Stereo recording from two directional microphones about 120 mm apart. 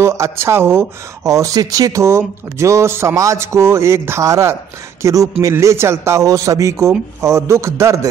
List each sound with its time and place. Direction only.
0.0 s speech: 20° right (ahead or behind)